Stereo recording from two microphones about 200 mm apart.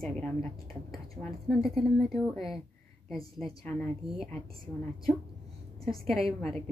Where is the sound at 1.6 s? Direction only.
Centre (ahead or behind).